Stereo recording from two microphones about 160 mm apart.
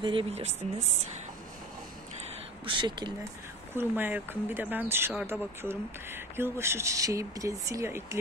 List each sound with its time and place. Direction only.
0.0 s speech: 30° right (ahead or behind)
2.6 s speech: 30° right (ahead or behind)
3.7 s speech: 10° right (ahead or behind)